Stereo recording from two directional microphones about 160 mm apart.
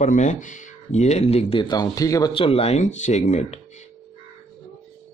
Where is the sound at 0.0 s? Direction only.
50° left (ahead or behind); by 2.3 s 20° left (ahead or behind).